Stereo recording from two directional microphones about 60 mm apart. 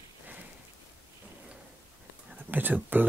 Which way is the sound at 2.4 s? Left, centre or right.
Right.